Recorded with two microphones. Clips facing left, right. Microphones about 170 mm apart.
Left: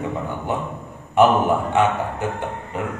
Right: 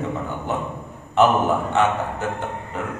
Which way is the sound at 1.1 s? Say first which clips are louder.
Left 2 dB; 10° left (ahead or behind).